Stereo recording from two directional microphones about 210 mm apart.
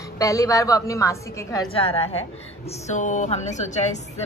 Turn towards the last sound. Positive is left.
turn(degrees=35)  # may be behind; listen again after turning